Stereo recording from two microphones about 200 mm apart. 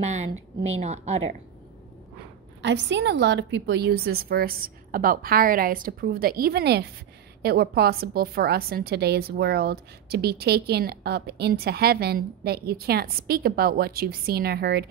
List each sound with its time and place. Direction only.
0.0 s speech: 35° right (ahead or behind)
2.6 s a woman's voice: 60° right (ahead or behind)